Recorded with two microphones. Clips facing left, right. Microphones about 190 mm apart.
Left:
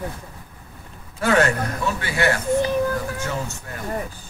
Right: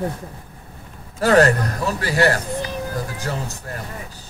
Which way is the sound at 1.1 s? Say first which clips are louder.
Right 4 dB; 35° right (ahead or behind).